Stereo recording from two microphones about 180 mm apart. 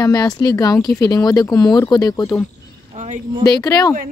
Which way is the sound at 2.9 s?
45° right (ahead or behind).